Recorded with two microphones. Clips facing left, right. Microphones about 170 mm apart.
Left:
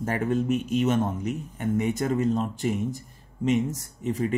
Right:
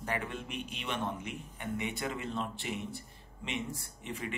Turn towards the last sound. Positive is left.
turn(degrees=40)  # may be behind; listen again after turning